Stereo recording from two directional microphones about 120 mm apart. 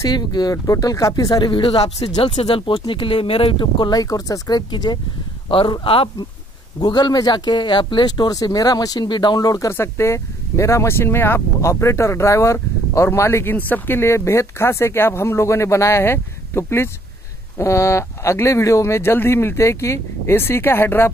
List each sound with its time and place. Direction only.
0.0 s speech: 35° left (ahead or behind)
5.5 s speech: 45° left (ahead or behind)
6.8 s speech: 40° left (ahead or behind); by 21.1 s 20° left (ahead or behind)